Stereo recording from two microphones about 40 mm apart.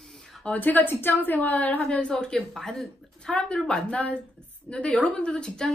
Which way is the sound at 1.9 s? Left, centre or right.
Left.